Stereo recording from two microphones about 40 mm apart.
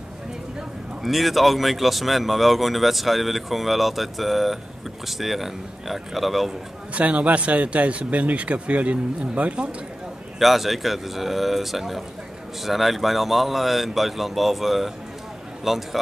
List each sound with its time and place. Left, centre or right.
1.0 s speech: centre
6.9 s speech: right
10.4 s speech: centre